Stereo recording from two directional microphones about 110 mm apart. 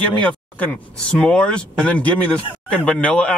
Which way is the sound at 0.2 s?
10° left (ahead or behind).